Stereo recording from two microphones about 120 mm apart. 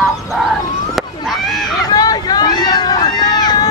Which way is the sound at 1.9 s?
35° left (ahead or behind).